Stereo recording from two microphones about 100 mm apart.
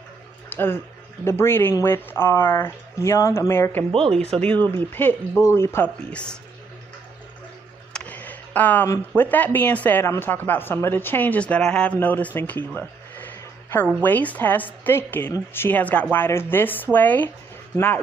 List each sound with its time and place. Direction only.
0.5 s a sound: 20° left (ahead or behind)
1.2 s speech: 25° left (ahead or behind)
3.9 s speech: 75° right (ahead or behind)
4.5 s speech: 20° left (ahead or behind)
6.0 s speech: 10° left (ahead or behind)
7.9 s a sound: 15° left (ahead or behind)
9.1 s speech: 15° left (ahead or behind)
12.4 s a sound: 20° left (ahead or behind)
14.0 s speech: 15° left (ahead or behind)